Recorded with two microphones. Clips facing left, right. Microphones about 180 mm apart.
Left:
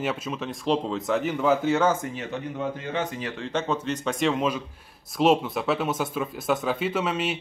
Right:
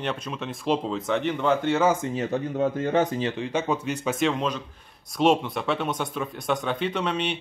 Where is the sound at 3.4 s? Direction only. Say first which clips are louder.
Right 1 dB; 10° right (ahead or behind).